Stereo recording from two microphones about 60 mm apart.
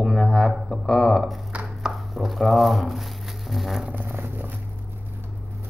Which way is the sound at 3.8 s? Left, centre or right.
Right.